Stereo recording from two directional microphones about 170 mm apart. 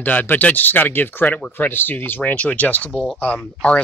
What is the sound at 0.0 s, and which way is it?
Speech, 10° left (ahead or behind).